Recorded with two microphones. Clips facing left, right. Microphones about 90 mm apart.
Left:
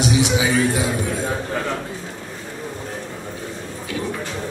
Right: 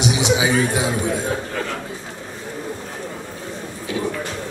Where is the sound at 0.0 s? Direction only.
20° right (ahead or behind).